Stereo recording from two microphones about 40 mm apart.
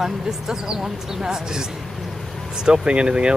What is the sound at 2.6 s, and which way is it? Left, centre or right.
Speech, right.